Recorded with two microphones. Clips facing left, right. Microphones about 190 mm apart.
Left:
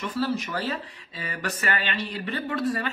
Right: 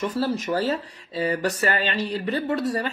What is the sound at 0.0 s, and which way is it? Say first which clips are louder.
A man's voice: right 3 dB; 45° right (ahead or behind).